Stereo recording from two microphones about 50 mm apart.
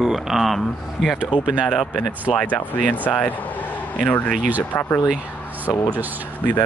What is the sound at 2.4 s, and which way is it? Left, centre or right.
Speech, left.